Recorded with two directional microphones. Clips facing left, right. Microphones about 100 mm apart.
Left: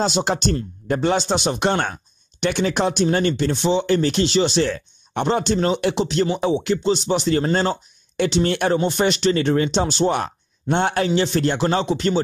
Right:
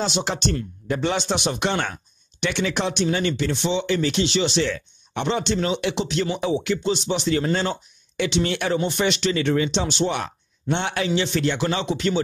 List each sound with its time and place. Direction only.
0.0 s speech: 40° left (ahead or behind)